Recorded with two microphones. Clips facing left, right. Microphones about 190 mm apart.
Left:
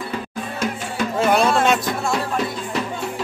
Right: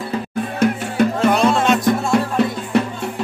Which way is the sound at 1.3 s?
5° left (ahead or behind).